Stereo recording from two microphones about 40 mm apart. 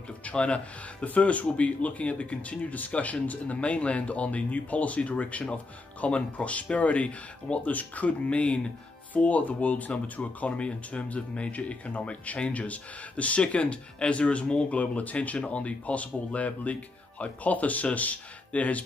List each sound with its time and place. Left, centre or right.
0.2 s speech: left